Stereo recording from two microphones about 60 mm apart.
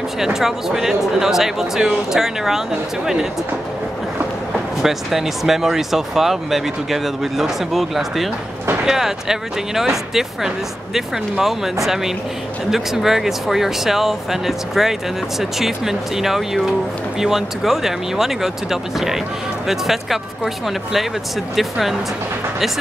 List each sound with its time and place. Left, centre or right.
0.2 s speech: centre
4.8 s speech: centre